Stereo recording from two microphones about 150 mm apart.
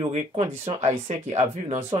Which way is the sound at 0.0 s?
35° right (ahead or behind).